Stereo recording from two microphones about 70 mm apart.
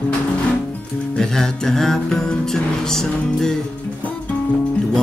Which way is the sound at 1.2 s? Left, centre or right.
Centre.